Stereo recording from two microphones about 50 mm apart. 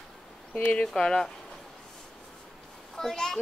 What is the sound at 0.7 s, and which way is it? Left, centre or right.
Speech, centre.